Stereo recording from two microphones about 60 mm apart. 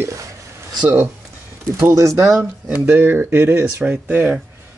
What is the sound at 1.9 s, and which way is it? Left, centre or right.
Speech, right.